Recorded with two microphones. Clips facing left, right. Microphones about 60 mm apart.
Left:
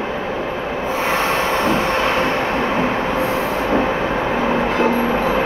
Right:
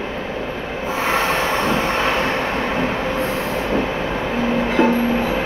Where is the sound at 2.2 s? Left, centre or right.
Centre.